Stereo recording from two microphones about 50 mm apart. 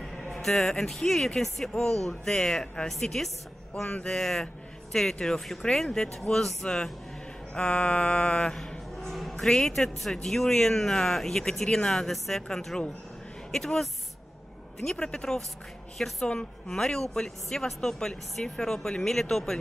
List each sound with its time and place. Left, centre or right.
0.0 s speech: centre
2.9 s a woman's voice: centre
3.9 s mantra: left
4.2 s speech: centre
7.5 s mantra: left
8.5 s a sound: centre
9.1 s music: centre
9.4 s speech: centre
14.9 s speech: centre